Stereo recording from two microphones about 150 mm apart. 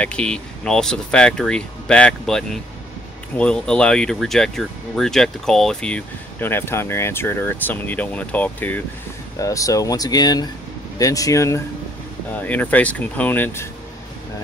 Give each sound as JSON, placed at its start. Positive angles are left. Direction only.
{"t": 0.0, "sound": "speech", "side_deg": 5}
{"t": 9.4, "sound": "speech", "side_deg": 20}